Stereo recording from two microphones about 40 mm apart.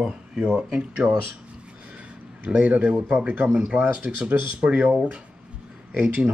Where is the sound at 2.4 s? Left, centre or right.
Right.